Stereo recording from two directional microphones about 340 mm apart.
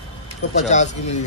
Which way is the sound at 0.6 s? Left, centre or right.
Left.